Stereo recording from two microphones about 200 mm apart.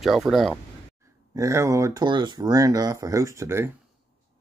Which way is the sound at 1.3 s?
15° right (ahead or behind).